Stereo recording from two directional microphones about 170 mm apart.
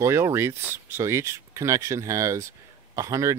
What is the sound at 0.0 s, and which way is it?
Speech, 15° right (ahead or behind).